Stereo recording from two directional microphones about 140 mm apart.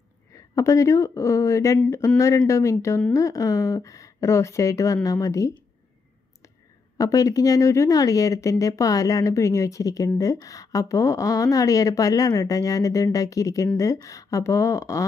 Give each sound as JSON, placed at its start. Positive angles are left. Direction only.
{"t": 0.6, "sound": "speech", "side_deg": 20}
{"t": 7.0, "sound": "speech", "side_deg": 25}